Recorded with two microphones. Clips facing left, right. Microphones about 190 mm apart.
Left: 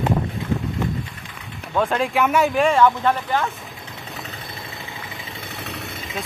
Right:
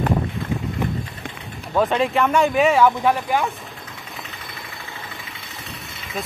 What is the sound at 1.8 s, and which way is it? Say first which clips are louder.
Speech: right 1 dB; centre (ahead or behind).